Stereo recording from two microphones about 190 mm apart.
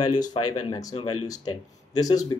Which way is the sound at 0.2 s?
20° left (ahead or behind).